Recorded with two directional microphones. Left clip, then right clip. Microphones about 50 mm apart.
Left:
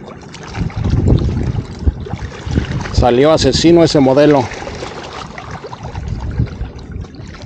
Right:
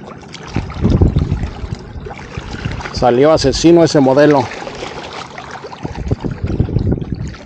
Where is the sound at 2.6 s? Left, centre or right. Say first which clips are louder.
Even; right.